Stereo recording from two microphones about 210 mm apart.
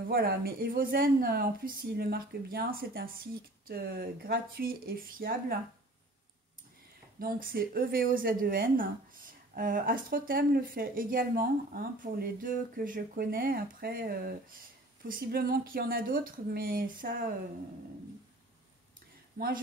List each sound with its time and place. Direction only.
0.1 s a woman's voice: 45° right (ahead or behind)
7.2 s a woman's voice: 45° right (ahead or behind)
19.3 s a woman's voice: 40° right (ahead or behind)